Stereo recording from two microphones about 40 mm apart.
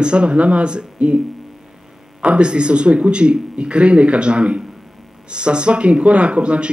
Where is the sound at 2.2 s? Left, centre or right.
Right.